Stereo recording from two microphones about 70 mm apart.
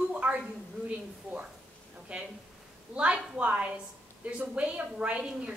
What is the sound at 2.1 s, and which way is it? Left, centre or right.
A woman's voice, centre.